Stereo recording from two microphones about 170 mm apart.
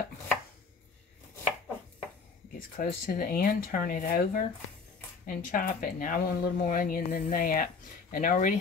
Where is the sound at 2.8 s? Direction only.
60° left (ahead or behind).